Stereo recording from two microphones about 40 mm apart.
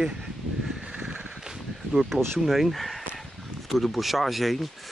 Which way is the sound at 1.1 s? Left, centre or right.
Right.